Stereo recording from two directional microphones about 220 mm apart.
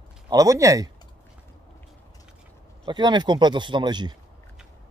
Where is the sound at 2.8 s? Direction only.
20° right (ahead or behind).